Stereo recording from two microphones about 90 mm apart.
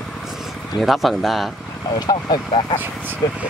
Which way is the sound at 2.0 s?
50° left (ahead or behind).